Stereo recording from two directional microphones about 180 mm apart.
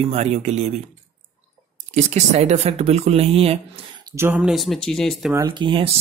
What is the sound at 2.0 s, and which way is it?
Speech, 40° right (ahead or behind).